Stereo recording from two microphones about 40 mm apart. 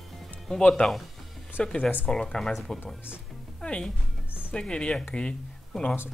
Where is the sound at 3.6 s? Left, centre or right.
Left.